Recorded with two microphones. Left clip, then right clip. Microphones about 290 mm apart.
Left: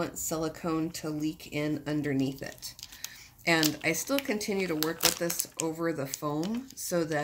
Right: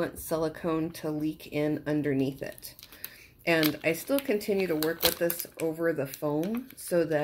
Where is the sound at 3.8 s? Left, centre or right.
Left.